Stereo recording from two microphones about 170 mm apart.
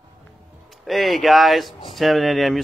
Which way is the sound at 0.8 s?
Centre (ahead or behind).